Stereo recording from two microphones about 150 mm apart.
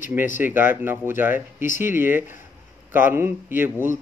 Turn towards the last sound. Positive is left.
turn(degrees=-15)  # may be behind; listen again after turning